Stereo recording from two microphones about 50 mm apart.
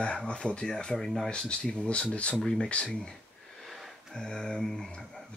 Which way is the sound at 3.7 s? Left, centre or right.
Centre.